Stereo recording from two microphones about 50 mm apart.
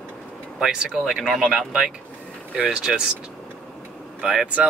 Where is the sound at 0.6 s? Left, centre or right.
Centre.